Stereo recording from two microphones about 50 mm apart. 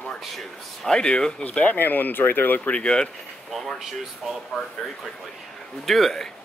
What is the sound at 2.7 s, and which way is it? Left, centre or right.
Speech, centre.